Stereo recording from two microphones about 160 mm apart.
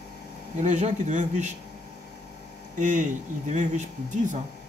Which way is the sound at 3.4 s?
50° right (ahead or behind).